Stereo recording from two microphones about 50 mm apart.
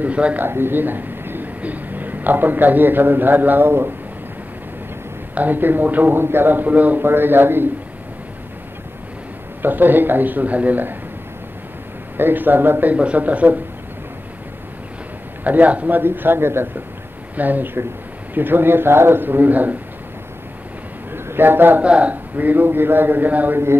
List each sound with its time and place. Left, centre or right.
0.0 s speech: right
0.4 s a woman's voice: right
5.3 s a man's voice: right
7.0 s a man's voice: right
9.6 s a man's voice: right
12.2 s a man's voice: right
12.9 s speech: right
15.4 s a man's voice: right
16.0 s a man's voice: right
17.4 s a man's voice: right
21.1 s a sound: right
21.8 s speech: right
22.1 s a man's voice: right